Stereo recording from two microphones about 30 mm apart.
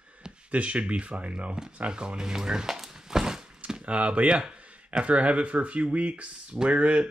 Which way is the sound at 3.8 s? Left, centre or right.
Right.